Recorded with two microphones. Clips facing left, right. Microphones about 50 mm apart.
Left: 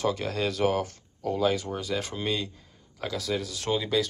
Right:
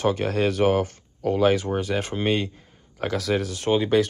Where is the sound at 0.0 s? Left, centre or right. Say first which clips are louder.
Right 5 dB; right.